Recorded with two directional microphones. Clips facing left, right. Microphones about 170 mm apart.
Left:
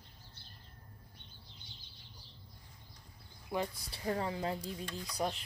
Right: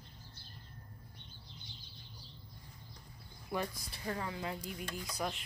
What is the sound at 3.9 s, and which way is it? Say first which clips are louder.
A woman's voice: left 6 dB; 30° left (ahead or behind).